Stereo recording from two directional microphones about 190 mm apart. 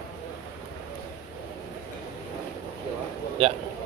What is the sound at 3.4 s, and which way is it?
Speech, 30° right (ahead or behind).